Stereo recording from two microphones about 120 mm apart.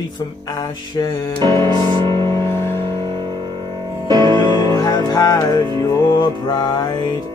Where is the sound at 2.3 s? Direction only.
20° left (ahead or behind).